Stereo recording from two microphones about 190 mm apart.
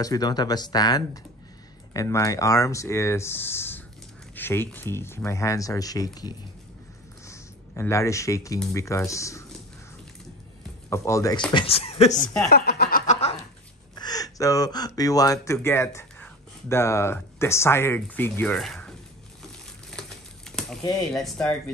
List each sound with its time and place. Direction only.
0.0 s speech: 20° left (ahead or behind)
7.2 s a sound: 15° left (ahead or behind)
8.7 s speech: 15° left (ahead or behind)
10.9 s speech: 15° left (ahead or behind)
11.5 s speech: 30° left (ahead or behind)
12.4 s speech: 55° left (ahead or behind)
13.0 s goat: 40° left (ahead or behind)
13.9 s speech: 20° left (ahead or behind); by 18.9 s centre (ahead or behind)
19.4 s a sound: 5° left (ahead or behind)
21.1 s speech: centre (ahead or behind)